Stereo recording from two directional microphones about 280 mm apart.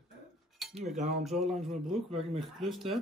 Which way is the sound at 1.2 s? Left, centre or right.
Centre.